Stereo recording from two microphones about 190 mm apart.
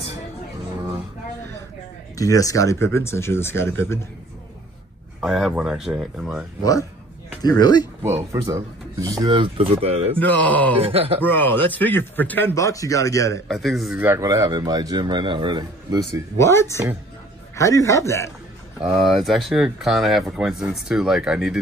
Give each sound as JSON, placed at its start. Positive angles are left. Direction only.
{"t": 2.1, "sound": "speech", "side_deg": 20}
{"t": 5.2, "sound": "speech", "side_deg": 0}
{"t": 6.6, "sound": "speech", "side_deg": 20}
{"t": 8.0, "sound": "speech", "side_deg": -15}
{"t": 10.1, "sound": "speech", "side_deg": 5}
{"t": 10.9, "sound": "speech", "side_deg": -30}
{"t": 11.2, "sound": "speech", "side_deg": 10}
{"t": 13.5, "sound": "speech", "side_deg": 0}
{"t": 16.3, "sound": "speech", "side_deg": 15}
{"t": 18.8, "sound": "speech", "side_deg": -5}